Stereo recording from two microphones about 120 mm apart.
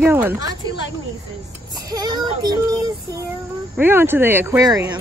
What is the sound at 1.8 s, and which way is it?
Child singing, 35° right (ahead or behind).